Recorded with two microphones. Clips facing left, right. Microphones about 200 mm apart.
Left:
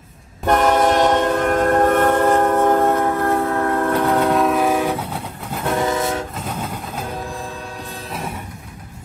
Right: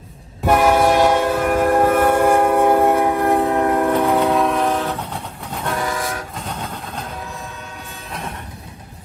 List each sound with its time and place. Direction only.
0.5 s train: 10° right (ahead or behind)
4.1 s train: centre (ahead or behind)
5.8 s train: 25° left (ahead or behind)
6.3 s train: 5° left (ahead or behind)